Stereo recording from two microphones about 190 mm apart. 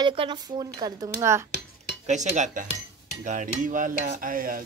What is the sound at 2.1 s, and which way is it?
Cutlery, 40° right (ahead or behind).